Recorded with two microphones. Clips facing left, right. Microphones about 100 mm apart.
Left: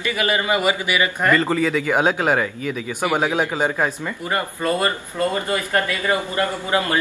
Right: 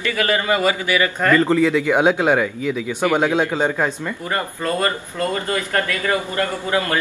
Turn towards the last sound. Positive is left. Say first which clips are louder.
# even
turn(degrees=15)  # may be behind; listen again after turning